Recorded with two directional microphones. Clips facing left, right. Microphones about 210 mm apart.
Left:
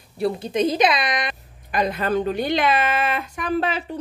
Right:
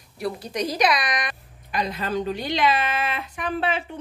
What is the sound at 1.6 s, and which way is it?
A woman's voice, 55° left (ahead or behind).